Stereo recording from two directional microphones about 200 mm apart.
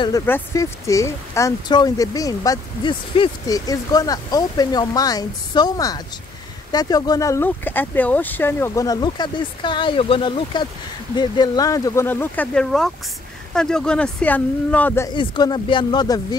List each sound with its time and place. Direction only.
0.0 s speech: 15° left (ahead or behind)
15.1 s speech: 20° left (ahead or behind)